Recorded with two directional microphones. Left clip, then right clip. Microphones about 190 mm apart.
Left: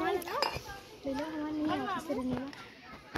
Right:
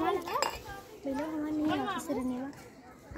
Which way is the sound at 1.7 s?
10° left (ahead or behind).